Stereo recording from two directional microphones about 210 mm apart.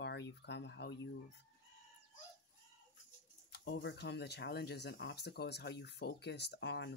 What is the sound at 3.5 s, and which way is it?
Speech, 55° left (ahead or behind).